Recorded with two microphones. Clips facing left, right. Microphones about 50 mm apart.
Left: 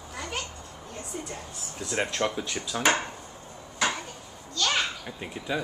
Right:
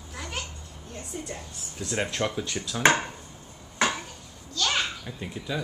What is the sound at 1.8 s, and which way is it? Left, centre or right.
Speech, centre.